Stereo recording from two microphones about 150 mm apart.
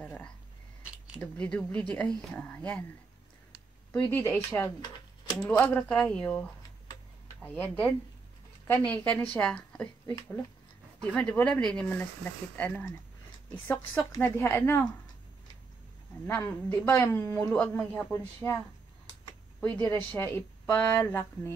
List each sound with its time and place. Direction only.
0.0 s a sound: 10° left (ahead or behind)
1.2 s speech: 5° left (ahead or behind)
3.9 s speech: 15° left (ahead or behind)
7.4 s a woman's voice: 10° left (ahead or behind)
10.0 s speech: 25° left (ahead or behind)
11.0 s speech: 10° left (ahead or behind)
14.1 s speech: 15° left (ahead or behind)
16.3 s speech: 10° left (ahead or behind)
19.6 s speech: 10° left (ahead or behind)